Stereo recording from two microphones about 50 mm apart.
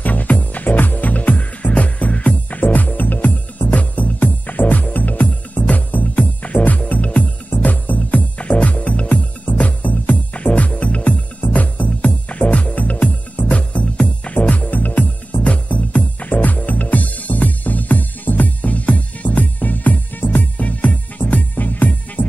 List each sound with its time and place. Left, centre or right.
0.0 s music: left